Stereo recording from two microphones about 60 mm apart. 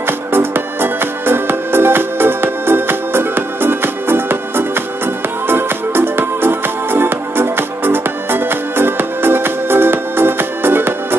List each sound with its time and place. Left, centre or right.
0.0 s music: right